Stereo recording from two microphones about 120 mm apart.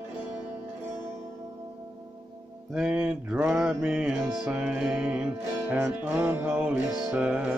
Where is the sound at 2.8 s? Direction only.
10° right (ahead or behind).